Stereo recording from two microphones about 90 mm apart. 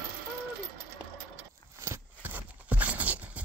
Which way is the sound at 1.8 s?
30° right (ahead or behind).